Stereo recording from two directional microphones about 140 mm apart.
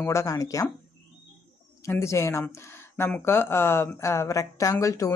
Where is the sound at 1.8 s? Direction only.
20° left (ahead or behind).